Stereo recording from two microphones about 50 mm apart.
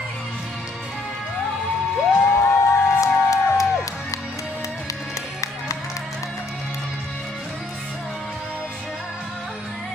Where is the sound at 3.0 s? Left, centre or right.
Left.